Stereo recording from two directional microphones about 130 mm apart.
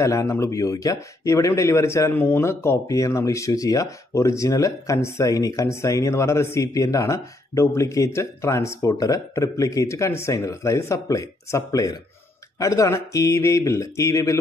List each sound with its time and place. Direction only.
0.0 s speech: 25° left (ahead or behind)